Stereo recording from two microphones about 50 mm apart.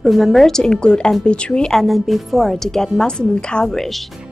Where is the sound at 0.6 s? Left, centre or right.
Centre.